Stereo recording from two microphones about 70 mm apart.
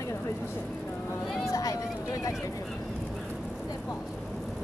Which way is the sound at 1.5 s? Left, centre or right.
Left.